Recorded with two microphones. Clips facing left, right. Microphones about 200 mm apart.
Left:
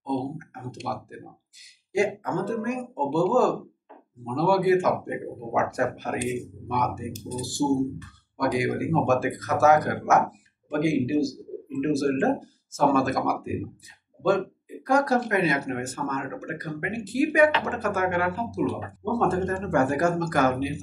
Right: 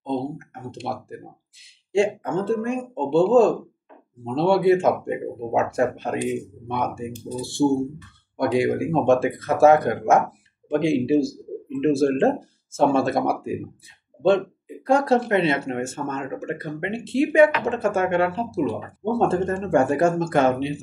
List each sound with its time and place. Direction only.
0.0 s speech: 30° right (ahead or behind)
8.4 s speech: 25° right (ahead or behind)